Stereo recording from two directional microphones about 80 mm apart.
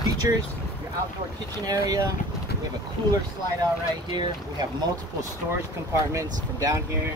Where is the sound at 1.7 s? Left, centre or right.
Right.